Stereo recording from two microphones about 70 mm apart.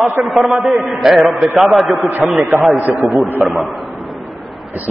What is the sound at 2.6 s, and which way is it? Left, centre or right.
Speech, right.